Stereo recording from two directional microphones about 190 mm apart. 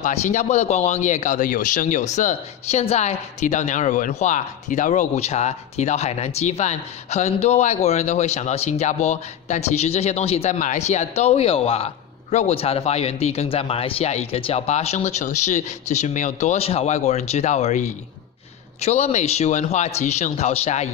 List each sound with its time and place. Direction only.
0.0 s speech: 40° left (ahead or behind)